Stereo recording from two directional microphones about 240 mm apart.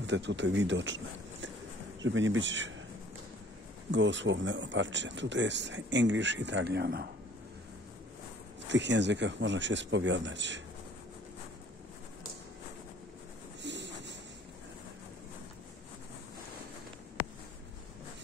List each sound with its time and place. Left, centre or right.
0.0 s speech: right
3.9 s speech: right
8.6 s speech: right
13.6 s a sound: right